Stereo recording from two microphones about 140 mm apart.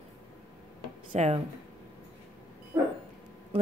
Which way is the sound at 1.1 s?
55° right (ahead or behind).